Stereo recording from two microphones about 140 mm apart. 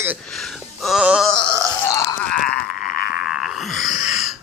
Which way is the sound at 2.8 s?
90° left.